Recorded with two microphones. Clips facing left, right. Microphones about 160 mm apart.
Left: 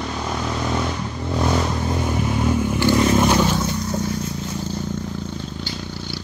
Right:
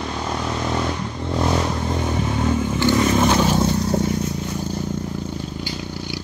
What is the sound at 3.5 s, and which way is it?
Vehicle, 30° right (ahead or behind).